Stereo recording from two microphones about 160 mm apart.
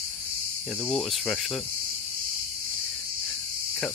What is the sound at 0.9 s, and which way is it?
Cricket, centre (ahead or behind).